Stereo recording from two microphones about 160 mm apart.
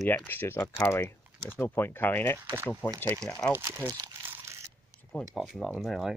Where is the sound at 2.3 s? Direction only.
15° right (ahead or behind).